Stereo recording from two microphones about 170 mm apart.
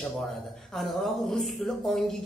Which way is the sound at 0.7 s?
5° left (ahead or behind).